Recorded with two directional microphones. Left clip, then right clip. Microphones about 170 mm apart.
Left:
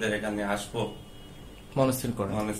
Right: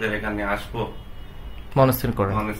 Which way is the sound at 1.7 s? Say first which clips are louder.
Right 7 dB; 55° right (ahead or behind).